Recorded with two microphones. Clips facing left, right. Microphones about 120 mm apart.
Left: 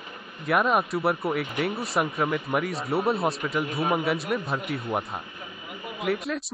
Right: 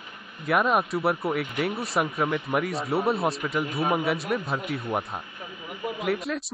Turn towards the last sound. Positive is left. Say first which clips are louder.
# even
turn(degrees=0)  # may be behind; listen again after turning